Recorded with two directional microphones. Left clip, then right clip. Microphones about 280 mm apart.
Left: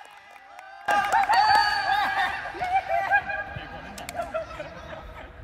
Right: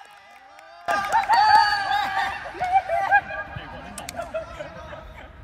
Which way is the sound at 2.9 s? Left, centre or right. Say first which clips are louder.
Right 3 dB; centre.